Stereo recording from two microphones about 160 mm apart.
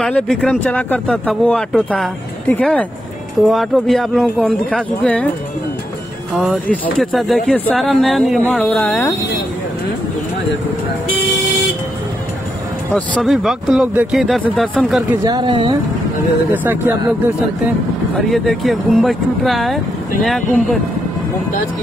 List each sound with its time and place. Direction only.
0.0 s speech: 5° left (ahead or behind)
6.3 s speech: centre (ahead or behind)
13.1 s speech: centre (ahead or behind)
15.2 s speech: 25° right (ahead or behind)
18.3 s speech: centre (ahead or behind)